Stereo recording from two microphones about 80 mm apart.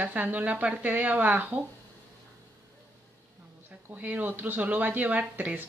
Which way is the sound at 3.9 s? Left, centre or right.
Right.